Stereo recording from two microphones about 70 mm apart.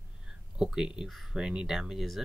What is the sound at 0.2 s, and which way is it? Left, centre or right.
Speech, centre.